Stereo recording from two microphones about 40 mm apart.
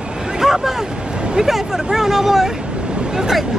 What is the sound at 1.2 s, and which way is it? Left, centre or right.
Hubbub, centre.